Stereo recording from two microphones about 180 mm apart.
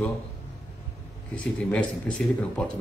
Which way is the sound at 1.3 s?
10° left (ahead or behind).